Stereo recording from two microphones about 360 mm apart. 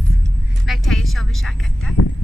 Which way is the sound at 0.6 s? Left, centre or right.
Centre.